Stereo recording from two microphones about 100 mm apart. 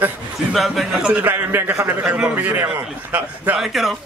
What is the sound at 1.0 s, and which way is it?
A man's voice, 15° right (ahead or behind).